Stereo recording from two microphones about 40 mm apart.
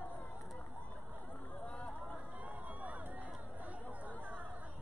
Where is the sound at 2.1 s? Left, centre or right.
Right.